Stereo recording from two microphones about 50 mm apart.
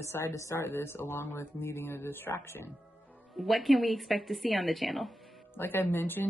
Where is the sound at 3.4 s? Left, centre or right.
Centre.